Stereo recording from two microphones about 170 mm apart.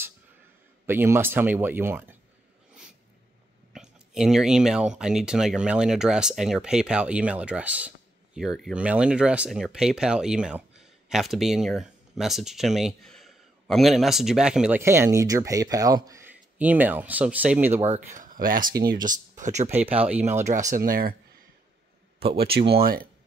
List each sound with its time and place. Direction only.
0.8 s speech: 15° right (ahead or behind)
3.7 s speech: 5° right (ahead or behind)
14.8 s speech: 15° right (ahead or behind)
17.8 s speech: 45° right (ahead or behind); by 18.9 s 60° right (ahead or behind)
19.0 s speech: 45° right (ahead or behind)
20.0 s speech: 10° right (ahead or behind)
20.4 s speech: 45° right (ahead or behind)
22.2 s speech: 65° right (ahead or behind)